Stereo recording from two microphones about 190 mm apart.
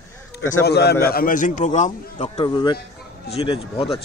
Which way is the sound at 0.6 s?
60° left (ahead or behind).